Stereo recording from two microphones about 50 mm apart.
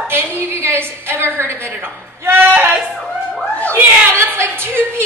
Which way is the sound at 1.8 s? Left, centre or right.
Right.